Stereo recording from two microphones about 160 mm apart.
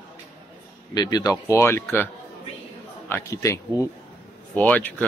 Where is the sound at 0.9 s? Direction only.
25° left (ahead or behind).